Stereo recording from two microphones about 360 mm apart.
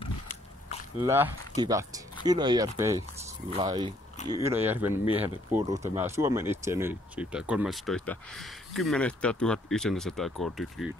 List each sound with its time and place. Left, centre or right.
0.0 s biting: centre
0.9 s speech: centre